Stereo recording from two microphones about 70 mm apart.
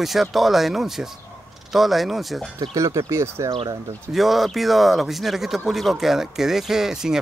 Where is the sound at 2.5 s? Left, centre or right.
Right.